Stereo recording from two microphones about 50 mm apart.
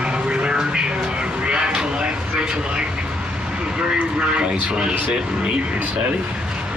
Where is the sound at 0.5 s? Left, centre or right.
Centre.